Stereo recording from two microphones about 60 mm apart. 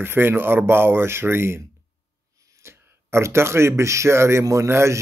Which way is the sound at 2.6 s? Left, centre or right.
Right.